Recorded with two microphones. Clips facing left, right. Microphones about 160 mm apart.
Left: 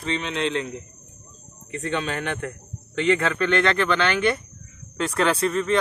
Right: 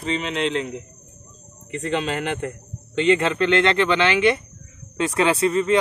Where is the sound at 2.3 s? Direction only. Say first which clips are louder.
Right 3 dB; 25° right (ahead or behind).